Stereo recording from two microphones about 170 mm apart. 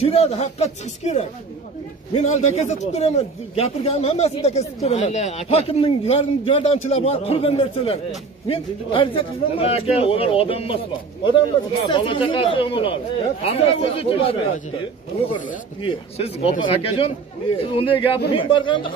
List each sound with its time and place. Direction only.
0.0 s a man's voice: 40° left (ahead or behind)
11.9 s a man's voice: 30° left (ahead or behind)
15.8 s a man's voice: 35° left (ahead or behind)